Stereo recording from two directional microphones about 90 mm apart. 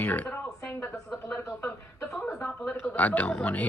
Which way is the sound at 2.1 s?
Centre (ahead or behind).